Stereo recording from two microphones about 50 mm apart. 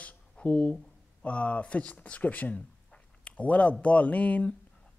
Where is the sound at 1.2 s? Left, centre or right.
Left.